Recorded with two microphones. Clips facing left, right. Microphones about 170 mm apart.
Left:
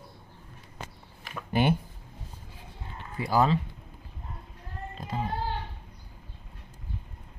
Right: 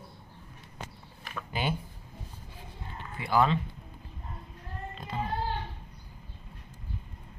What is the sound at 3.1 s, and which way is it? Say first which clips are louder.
Speech: left 1 dB; 40° left (ahead or behind).